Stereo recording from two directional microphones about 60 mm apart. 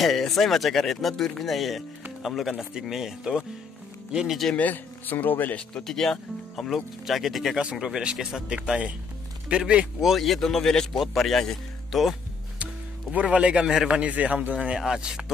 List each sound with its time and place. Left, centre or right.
0.0 s a man's voice: centre
4.6 s a man's voice: left
5.9 s a man's voice: centre
7.8 s a man's voice: centre
10.0 s a man's voice: centre
13.1 s a man's voice: centre